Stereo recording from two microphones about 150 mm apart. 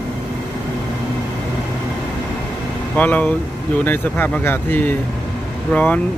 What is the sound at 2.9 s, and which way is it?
Speech, 10° left (ahead or behind).